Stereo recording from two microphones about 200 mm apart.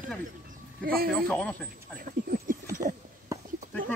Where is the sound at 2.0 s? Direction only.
45° right (ahead or behind).